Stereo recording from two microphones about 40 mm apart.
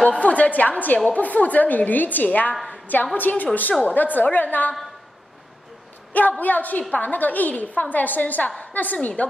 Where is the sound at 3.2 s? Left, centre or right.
Left.